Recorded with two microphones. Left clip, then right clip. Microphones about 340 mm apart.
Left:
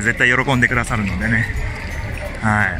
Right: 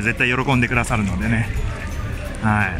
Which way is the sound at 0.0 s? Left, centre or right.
Centre.